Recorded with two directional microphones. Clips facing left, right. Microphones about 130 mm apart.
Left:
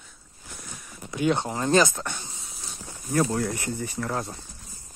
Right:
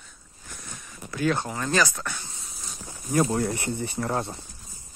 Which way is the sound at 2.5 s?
Centre (ahead or behind).